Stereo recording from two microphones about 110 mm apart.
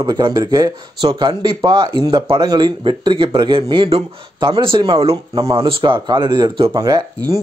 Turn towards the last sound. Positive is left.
turn(degrees=-35)  # may be behind; listen again after turning